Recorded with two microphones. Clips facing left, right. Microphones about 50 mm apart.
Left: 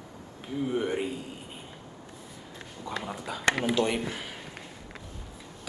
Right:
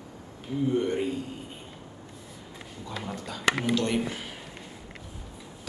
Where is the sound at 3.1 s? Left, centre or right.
Centre.